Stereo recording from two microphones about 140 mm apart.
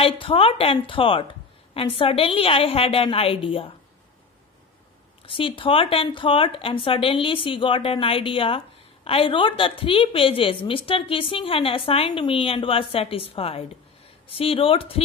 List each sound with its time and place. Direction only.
0.0 s speech: 40° left (ahead or behind)
5.2 s speech: 40° left (ahead or behind)